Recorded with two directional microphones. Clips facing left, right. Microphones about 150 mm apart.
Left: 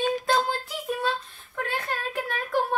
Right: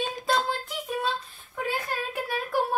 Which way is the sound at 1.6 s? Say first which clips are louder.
Right 1 dB; 10° right (ahead or behind).